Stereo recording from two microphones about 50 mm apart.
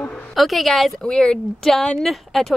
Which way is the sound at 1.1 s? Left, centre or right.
Centre.